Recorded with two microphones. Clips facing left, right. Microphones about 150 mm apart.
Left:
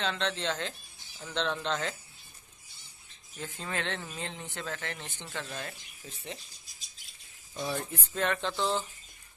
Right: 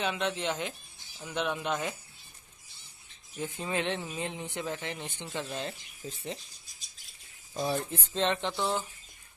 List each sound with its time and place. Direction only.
0.0 s speech: 15° right (ahead or behind)
3.3 s speech: 15° right (ahead or behind)
6.0 s rub: 35° right (ahead or behind)
7.5 s speech: 25° right (ahead or behind)